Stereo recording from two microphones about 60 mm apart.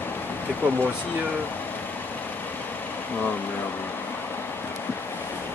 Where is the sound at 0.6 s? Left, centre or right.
Left.